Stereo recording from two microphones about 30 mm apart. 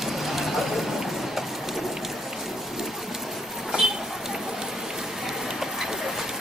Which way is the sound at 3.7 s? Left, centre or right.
Right.